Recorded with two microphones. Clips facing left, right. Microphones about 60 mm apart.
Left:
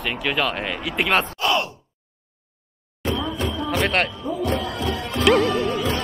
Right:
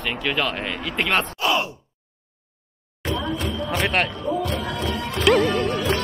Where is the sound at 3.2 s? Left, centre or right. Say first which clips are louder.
Even; right.